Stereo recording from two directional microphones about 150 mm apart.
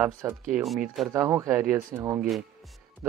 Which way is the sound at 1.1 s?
20° right (ahead or behind).